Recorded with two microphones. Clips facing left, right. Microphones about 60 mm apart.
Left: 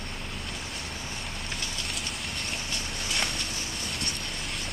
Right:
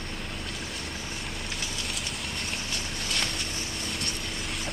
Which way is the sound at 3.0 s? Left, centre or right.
Centre.